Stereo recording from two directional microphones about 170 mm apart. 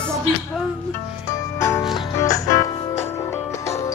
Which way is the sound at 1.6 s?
15° left (ahead or behind).